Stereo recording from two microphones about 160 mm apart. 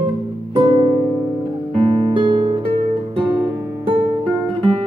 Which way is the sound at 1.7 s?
35° right (ahead or behind).